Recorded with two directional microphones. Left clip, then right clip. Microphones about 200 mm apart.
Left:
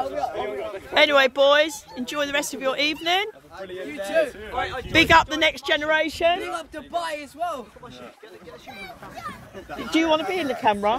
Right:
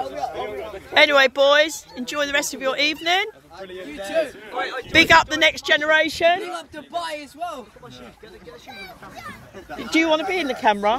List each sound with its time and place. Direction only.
0.0 s chatter: 5° left (ahead or behind)
0.9 s speech: 5° right (ahead or behind)
3.8 s a man's voice: 15° left (ahead or behind)
4.9 s speech: centre (ahead or behind); by 6.4 s 20° right (ahead or behind)
6.4 s a man's voice: 20° left (ahead or behind)
9.8 s speech: 20° right (ahead or behind)